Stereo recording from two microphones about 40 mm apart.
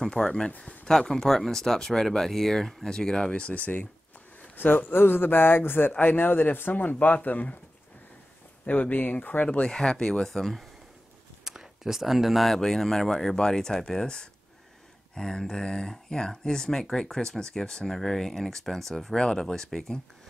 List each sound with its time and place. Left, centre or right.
0.1 s speech: centre
3.3 s speech: left
4.6 s speech: left
8.6 s speech: left
9.5 s speech: left
10.2 s speech: centre
11.4 s a sound: centre
12.4 s speech: centre
19.1 s speech: centre